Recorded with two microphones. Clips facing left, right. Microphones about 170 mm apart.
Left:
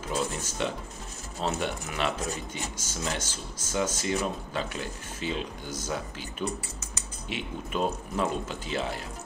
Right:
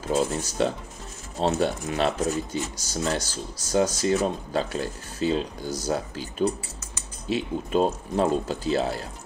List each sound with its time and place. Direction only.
0.2 s speech: 35° right (ahead or behind)